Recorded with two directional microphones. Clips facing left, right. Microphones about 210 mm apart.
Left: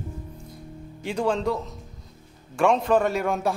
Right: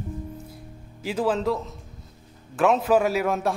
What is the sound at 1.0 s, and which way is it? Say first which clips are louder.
A man's voice: right 1 dB; 5° right (ahead or behind).